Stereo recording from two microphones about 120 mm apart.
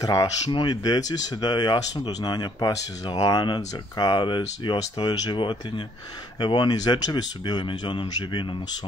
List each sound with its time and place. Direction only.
0.0 s speech: 35° left (ahead or behind)